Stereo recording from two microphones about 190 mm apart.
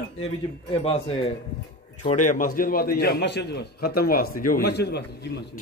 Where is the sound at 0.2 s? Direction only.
30° left (ahead or behind); by 5.4 s 60° left (ahead or behind).